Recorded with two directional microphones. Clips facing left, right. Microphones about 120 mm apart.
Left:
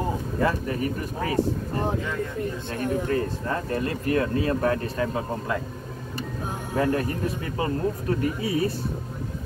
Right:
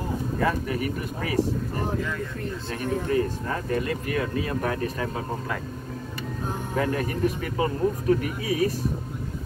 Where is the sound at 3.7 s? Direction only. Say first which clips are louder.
Left 2 dB; 30° left (ahead or behind).